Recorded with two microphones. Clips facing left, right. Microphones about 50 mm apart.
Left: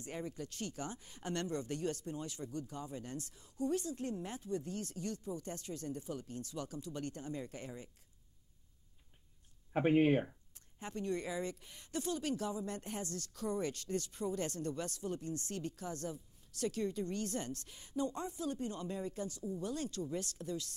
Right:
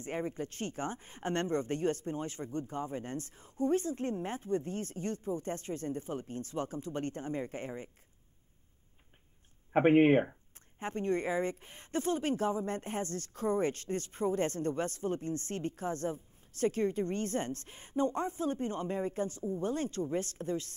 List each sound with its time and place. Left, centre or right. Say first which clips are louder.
0.0 s a woman's voice: right 7 dB; right
9.7 s a woman's voice: right 6 dB; right